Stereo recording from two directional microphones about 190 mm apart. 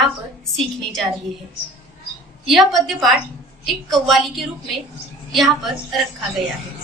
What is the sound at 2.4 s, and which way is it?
A woman's voice, centre (ahead or behind).